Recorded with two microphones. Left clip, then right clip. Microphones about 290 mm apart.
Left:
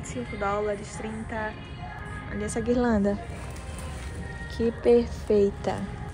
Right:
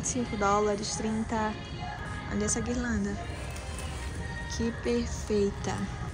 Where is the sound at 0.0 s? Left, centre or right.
Centre.